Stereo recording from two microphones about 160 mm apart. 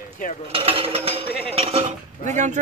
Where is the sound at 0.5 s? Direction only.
35° right (ahead or behind).